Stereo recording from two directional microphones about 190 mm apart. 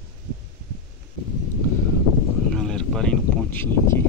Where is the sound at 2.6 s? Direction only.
5° left (ahead or behind).